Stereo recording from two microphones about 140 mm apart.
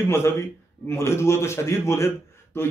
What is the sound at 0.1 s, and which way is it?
Speech, 20° left (ahead or behind).